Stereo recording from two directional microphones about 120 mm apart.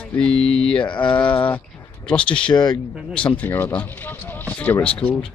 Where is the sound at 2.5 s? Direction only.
35° left (ahead or behind).